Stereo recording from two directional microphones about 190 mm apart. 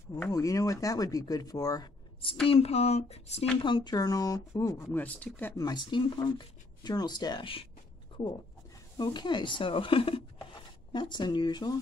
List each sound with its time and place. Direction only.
0.1 s speech: 15° left (ahead or behind)
2.4 s speech: 30° left (ahead or behind)
3.6 s speech: 25° left (ahead or behind); by 5.5 s 5° left (ahead or behind)
5.6 s speech: 25° left (ahead or behind)
8.9 s speech: 20° left (ahead or behind)